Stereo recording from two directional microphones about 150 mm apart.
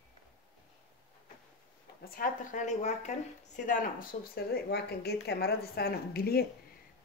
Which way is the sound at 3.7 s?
65° left (ahead or behind).